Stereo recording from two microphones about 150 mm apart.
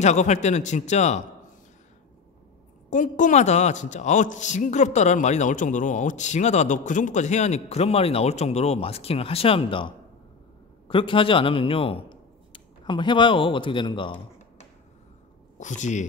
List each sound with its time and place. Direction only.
0.0 s speech: 50° left (ahead or behind)
2.9 s speech: 60° left (ahead or behind); by 14.1 s 35° left (ahead or behind)
15.6 s speech: 55° left (ahead or behind)